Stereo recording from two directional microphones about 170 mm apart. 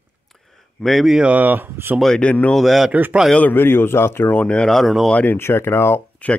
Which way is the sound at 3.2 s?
5° left (ahead or behind).